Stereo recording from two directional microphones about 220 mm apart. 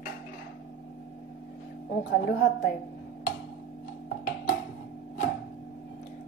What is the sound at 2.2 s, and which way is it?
Speech, 45° left (ahead or behind).